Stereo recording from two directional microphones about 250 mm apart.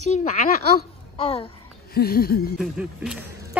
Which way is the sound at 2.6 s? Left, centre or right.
Centre.